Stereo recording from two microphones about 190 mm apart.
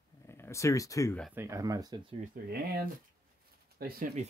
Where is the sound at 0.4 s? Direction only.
15° left (ahead or behind).